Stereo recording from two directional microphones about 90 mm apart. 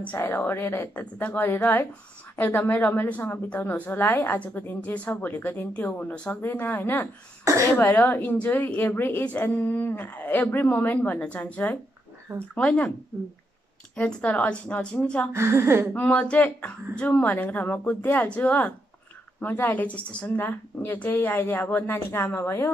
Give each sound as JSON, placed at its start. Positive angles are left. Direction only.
{"t": 0.0, "sound": "a woman's voice", "side_deg": 20}
{"t": 13.9, "sound": "speech", "side_deg": 15}
{"t": 15.3, "sound": "a woman's voice", "side_deg": -30}
{"t": 15.9, "sound": "a woman's voice", "side_deg": 15}